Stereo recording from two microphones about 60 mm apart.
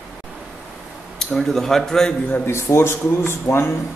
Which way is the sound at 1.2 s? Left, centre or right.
Centre.